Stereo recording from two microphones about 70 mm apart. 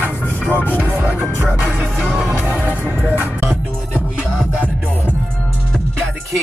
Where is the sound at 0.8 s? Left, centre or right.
Right.